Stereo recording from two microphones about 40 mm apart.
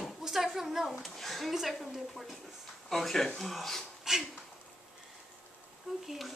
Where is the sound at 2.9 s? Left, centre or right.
Centre.